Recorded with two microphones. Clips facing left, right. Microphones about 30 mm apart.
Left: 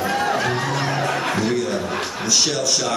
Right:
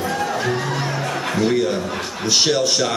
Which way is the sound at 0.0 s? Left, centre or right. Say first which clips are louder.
Left 1 dB; centre.